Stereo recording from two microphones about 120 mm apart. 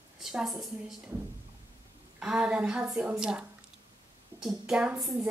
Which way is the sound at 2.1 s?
5° right (ahead or behind).